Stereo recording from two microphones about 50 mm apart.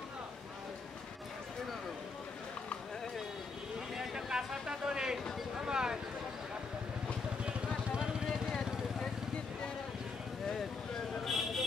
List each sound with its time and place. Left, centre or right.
3.9 s a sound: centre
7.4 s vehicle: centre
11.1 s vehicle: centre